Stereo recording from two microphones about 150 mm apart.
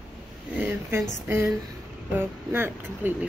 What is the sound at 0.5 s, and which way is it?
Speech, 10° right (ahead or behind).